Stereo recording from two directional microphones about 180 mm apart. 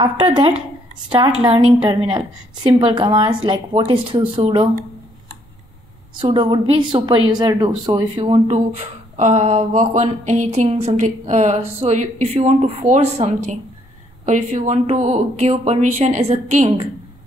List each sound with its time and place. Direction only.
0.0 s a woman's voice: 25° right (ahead or behind)
6.2 s a woman's voice: 25° right (ahead or behind)
9.1 s speech: 40° right (ahead or behind)